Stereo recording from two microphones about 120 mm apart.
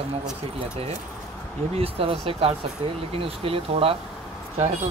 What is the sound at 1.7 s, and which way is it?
Speech, 50° right (ahead or behind).